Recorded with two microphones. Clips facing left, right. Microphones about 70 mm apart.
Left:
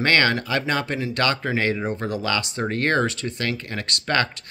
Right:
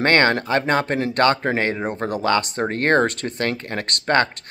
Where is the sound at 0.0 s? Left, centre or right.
Right.